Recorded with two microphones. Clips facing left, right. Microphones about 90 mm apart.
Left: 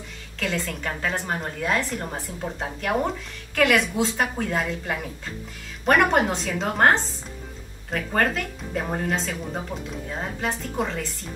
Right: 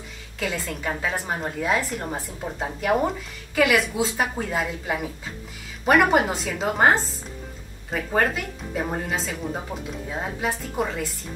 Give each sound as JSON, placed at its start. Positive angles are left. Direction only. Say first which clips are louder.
{"t": 0.4, "sound": "a woman's voice", "louder": "even", "side_deg": -5}